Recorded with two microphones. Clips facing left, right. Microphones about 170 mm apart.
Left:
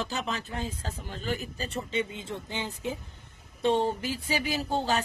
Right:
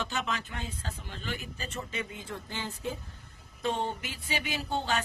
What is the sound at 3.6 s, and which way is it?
Speech, 35° left (ahead or behind).